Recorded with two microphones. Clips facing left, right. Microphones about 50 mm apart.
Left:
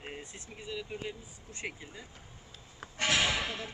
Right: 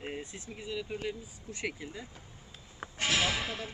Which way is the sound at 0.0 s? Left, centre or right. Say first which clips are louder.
Right 4 dB; centre.